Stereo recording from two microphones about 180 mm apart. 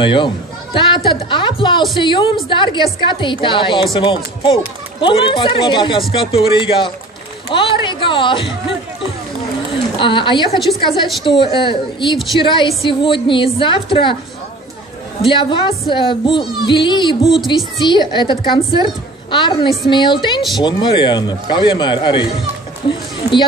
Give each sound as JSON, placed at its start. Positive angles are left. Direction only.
{"t": 0.0, "sound": "a woman's voice", "side_deg": 25}
{"t": 9.7, "sound": "a woman's voice", "side_deg": 30}
{"t": 15.2, "sound": "a woman's voice", "side_deg": 25}